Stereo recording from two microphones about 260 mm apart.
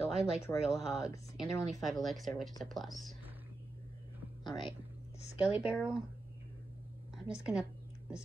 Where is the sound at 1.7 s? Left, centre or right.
Centre.